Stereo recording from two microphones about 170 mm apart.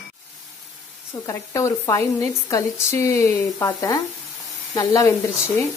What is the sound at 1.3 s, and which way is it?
Speech, 20° left (ahead or behind).